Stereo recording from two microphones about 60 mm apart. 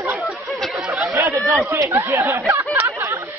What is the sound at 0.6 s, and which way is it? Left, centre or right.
Chatter, centre.